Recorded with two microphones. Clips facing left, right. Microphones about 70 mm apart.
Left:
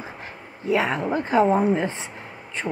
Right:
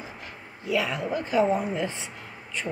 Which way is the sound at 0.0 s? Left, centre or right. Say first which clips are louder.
Left 4 dB; left.